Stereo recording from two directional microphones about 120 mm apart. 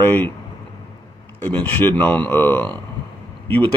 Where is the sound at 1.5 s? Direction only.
15° left (ahead or behind).